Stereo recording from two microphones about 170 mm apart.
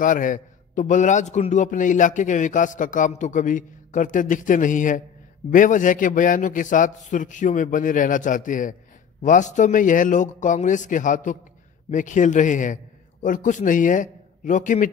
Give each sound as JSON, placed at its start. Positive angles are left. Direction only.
{"t": 0.0, "sound": "a man's voice", "side_deg": 50}